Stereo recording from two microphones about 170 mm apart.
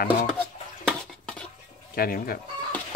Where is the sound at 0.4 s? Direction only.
5° left (ahead or behind).